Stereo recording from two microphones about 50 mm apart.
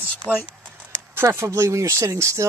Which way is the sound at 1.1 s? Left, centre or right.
Right.